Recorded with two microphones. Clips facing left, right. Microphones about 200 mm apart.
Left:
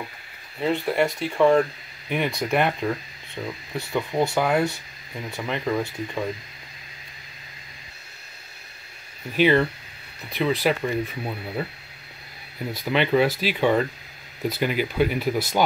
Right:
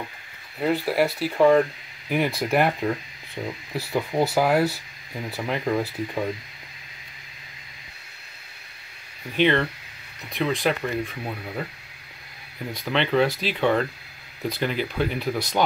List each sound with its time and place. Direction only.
0.6 s speech: 5° right (ahead or behind)
3.4 s speech: 15° right (ahead or behind)
3.7 s speech: 5° right (ahead or behind)
9.4 s speech: 5° left (ahead or behind)
12.7 s speech: 10° left (ahead or behind)